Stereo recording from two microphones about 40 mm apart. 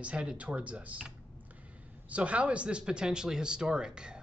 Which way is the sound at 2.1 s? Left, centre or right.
Right.